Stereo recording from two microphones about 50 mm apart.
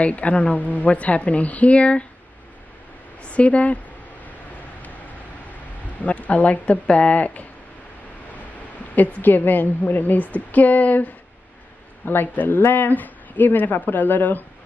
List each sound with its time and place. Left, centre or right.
0.0 s a woman's voice: left
3.3 s a woman's voice: left
6.0 s speech: left
8.9 s speech: left